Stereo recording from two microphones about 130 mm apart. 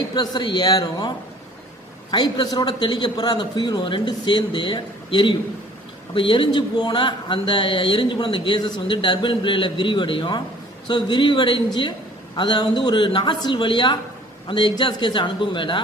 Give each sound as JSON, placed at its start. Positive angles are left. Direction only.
{"t": 0.1, "sound": "a man's voice", "side_deg": 35}